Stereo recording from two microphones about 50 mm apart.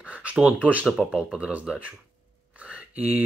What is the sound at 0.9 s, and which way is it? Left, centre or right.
Speech, centre.